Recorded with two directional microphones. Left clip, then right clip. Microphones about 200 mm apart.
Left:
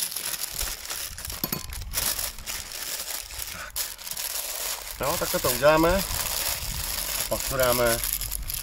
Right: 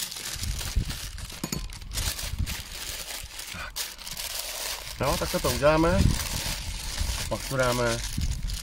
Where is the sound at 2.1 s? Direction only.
Centre (ahead or behind).